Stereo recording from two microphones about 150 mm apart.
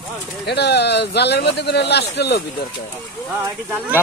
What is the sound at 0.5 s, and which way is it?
Speech, 90° left.